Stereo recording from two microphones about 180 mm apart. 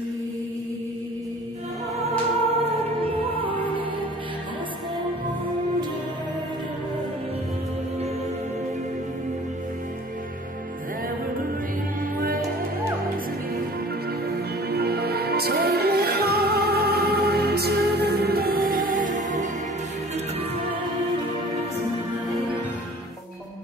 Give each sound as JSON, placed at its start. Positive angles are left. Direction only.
{"t": 2.5, "sound": "music", "side_deg": -35}
{"t": 14.2, "sound": "music", "side_deg": -60}